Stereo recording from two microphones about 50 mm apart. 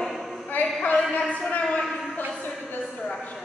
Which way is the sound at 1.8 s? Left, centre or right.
Centre.